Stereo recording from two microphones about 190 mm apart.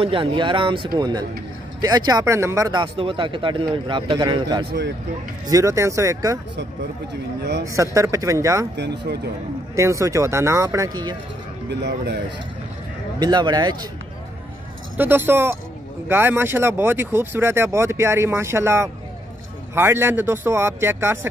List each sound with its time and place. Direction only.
0.0 s speech: 25° right (ahead or behind)
7.6 s speech: 15° right (ahead or behind)
8.7 s speech: 65° right (ahead or behind)
9.8 s speech: 15° right (ahead or behind)
11.7 s speech: 60° right (ahead or behind)
13.2 s speech: 20° right (ahead or behind)
15.0 s speech: 10° right (ahead or behind)